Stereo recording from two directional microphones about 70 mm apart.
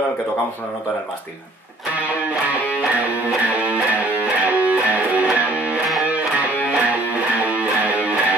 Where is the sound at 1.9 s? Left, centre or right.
Right.